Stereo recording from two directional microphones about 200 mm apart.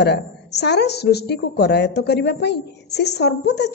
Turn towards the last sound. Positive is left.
turn(degrees=55)  # may be behind; listen again after turning